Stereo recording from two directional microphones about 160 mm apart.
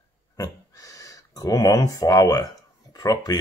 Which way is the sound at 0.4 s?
20° left (ahead or behind).